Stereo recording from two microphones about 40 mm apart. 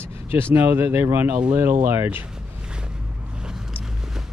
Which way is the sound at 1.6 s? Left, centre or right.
Right.